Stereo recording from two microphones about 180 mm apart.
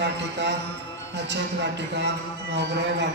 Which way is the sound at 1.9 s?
75° right (ahead or behind).